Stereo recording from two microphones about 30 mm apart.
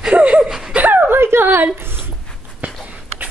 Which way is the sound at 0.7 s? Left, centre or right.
Right.